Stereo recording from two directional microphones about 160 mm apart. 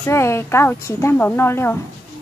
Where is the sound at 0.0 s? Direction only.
15° left (ahead or behind).